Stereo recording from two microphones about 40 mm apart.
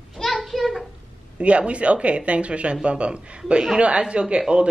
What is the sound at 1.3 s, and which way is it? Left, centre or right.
A woman's voice, right.